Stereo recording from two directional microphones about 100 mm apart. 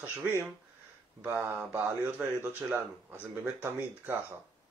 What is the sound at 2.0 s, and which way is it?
A man's voice, 15° right (ahead or behind).